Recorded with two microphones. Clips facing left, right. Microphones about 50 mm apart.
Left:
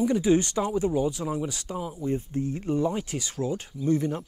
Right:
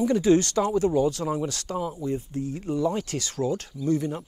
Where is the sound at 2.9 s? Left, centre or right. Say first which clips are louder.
Right 2 dB; centre.